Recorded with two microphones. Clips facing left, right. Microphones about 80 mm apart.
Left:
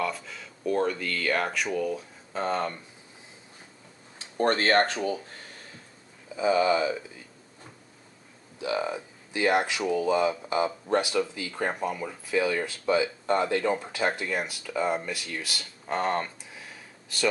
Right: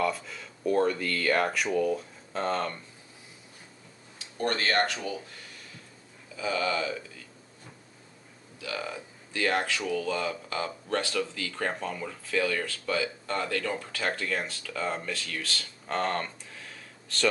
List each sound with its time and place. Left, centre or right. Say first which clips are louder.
0.0 s speech: right 2 dB; centre
2.0 s speech: left 1 dB; centre
4.2 s a sound: left 5 dB; left
6.3 s speech: left 6 dB; left
8.5 s speech: left 6 dB; left